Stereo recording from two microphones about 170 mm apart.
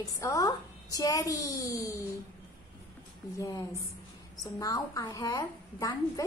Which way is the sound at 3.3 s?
20° left (ahead or behind).